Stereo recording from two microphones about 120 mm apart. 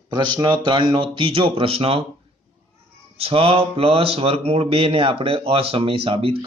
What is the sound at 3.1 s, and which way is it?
Speech, 55° right (ahead or behind).